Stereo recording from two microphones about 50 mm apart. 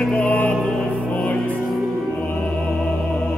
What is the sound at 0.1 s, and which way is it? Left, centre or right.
Music, left.